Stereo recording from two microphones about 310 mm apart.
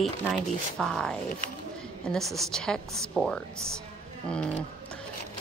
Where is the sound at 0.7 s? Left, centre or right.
Centre.